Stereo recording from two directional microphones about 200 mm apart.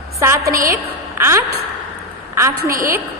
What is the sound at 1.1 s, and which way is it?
Speech, 10° right (ahead or behind).